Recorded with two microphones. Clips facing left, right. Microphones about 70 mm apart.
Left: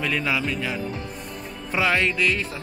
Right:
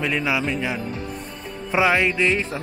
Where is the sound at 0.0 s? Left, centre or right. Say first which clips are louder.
Right 2 dB; centre.